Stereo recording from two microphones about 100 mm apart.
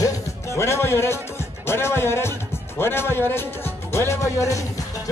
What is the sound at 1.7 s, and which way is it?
Speech, 25° left (ahead or behind).